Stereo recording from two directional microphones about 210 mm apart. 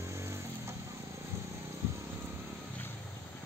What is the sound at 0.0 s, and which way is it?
Vehicle, 15° right (ahead or behind).